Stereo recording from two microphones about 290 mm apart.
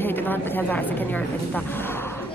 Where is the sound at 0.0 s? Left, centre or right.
Centre.